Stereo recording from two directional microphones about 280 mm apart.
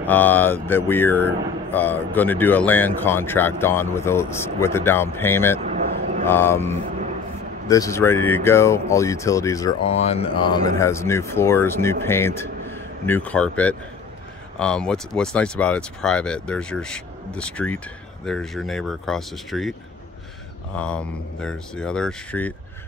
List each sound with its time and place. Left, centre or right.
0.0 s speech: centre
5.6 s a sound: right
6.2 s speech: centre
20.7 s speech: centre